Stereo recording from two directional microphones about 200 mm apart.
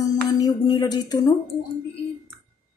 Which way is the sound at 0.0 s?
20° left (ahead or behind).